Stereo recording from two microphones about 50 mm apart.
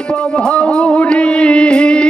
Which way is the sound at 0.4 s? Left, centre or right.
Centre.